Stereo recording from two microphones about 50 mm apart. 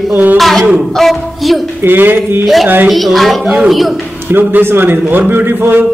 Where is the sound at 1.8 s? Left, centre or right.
Right.